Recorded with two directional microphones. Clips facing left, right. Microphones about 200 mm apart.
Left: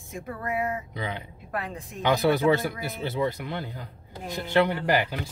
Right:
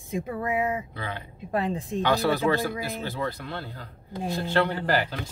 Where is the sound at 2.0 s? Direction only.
15° left (ahead or behind).